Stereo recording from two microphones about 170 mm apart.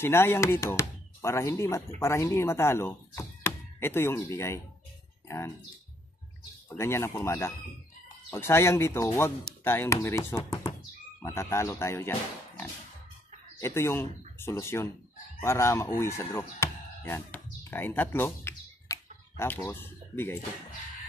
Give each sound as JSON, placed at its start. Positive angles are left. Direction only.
{"t": 0.0, "sound": "speech", "side_deg": 15}
{"t": 6.7, "sound": "speech", "side_deg": 15}
{"t": 16.0, "sound": "music", "side_deg": 15}